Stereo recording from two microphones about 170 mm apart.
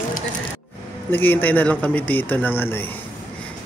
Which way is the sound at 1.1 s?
10° left (ahead or behind).